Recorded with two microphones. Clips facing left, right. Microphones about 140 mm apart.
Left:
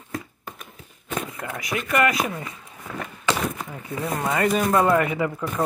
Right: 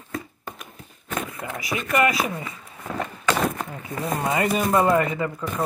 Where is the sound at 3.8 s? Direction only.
15° right (ahead or behind); by 5.4 s 10° left (ahead or behind).